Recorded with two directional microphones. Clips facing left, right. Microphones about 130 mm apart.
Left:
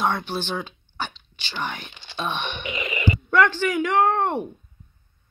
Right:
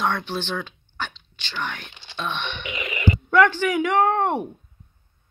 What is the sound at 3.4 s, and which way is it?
Speech, 10° right (ahead or behind).